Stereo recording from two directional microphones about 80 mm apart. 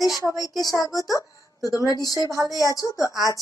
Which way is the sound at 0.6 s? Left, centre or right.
Left.